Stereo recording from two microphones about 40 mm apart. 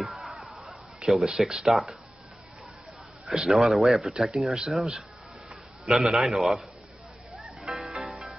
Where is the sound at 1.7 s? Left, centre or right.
Centre.